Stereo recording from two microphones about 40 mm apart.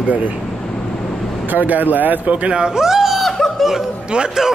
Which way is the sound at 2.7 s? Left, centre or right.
Centre.